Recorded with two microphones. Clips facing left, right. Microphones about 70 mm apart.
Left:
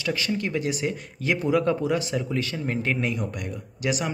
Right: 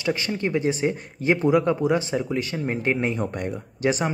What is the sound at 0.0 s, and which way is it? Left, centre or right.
Speech, right.